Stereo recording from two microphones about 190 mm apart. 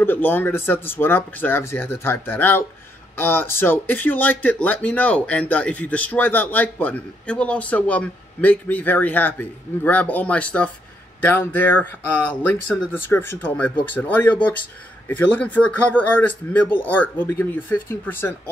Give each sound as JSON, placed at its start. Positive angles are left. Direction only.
{"t": 0.0, "sound": "speech", "side_deg": 10}